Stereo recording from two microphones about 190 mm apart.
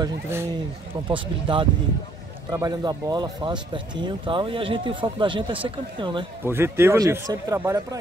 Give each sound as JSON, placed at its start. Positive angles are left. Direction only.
{"t": 0.0, "sound": "speech", "side_deg": -15}
{"t": 1.0, "sound": "speech", "side_deg": -25}
{"t": 6.4, "sound": "speech", "side_deg": -10}